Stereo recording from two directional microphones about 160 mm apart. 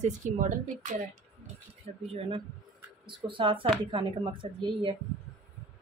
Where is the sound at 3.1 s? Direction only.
30° right (ahead or behind).